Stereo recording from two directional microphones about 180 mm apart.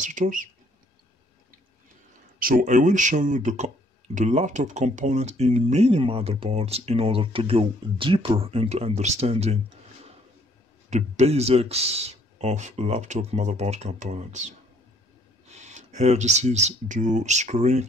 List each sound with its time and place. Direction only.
0.0 s speech: 45° right (ahead or behind)
2.3 s speech: 50° right (ahead or behind); by 9.6 s 35° right (ahead or behind)
10.9 s speech: 40° right (ahead or behind)